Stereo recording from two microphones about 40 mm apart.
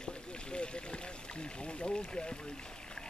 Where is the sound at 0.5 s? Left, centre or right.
Left.